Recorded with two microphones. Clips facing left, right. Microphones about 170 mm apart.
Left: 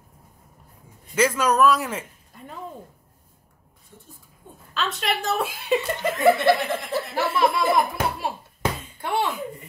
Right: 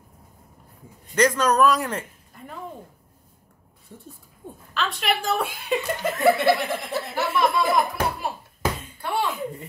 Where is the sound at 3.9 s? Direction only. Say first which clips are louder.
Right 5 dB; 55° right (ahead or behind).